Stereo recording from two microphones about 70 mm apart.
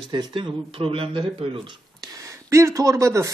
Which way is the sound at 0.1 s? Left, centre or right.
Right.